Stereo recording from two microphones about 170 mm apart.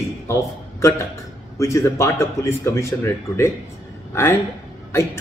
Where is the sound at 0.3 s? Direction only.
15° left (ahead or behind).